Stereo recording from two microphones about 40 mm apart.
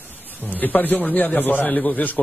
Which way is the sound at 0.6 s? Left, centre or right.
Left.